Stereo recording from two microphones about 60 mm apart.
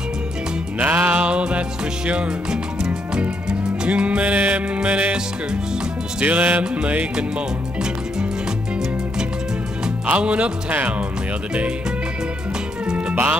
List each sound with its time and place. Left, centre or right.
0.7 s music: right
2.0 s speech: centre
4.8 s music: right
6.1 s music: right
10.0 s music: right
12.9 s cat: right